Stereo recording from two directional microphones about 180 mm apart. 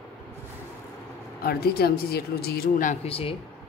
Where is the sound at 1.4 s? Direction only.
60° left (ahead or behind).